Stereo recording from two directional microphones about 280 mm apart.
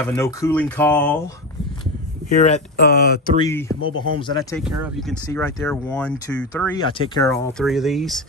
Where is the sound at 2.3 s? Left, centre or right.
Left.